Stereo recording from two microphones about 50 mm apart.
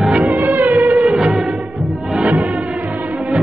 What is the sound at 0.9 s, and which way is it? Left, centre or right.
Music, centre.